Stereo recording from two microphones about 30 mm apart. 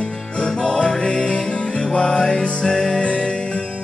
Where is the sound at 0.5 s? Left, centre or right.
Centre.